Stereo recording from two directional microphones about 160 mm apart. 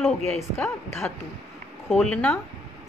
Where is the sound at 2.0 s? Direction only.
5° left (ahead or behind).